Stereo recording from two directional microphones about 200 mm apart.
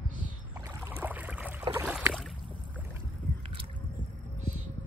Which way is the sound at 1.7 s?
10° right (ahead or behind).